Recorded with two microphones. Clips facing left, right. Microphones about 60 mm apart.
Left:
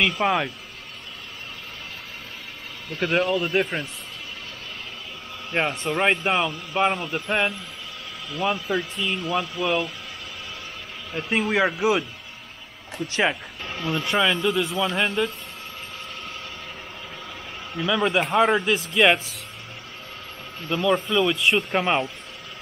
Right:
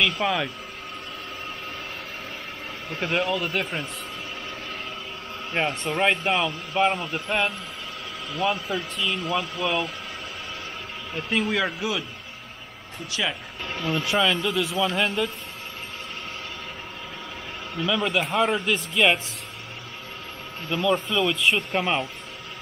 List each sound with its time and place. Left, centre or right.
0.2 s speech: left
3.1 s speech: centre
5.5 s a man's voice: centre
11.1 s a man's voice: centre
13.7 s speech: centre
17.7 s a man's voice: centre
20.6 s speech: centre